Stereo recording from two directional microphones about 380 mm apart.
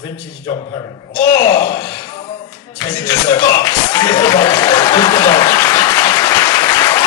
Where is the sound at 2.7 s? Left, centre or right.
Centre.